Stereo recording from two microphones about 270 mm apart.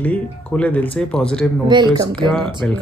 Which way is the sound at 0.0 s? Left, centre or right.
Centre.